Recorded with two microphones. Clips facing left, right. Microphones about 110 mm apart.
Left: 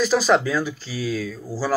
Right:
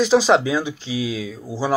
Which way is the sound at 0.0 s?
20° right (ahead or behind).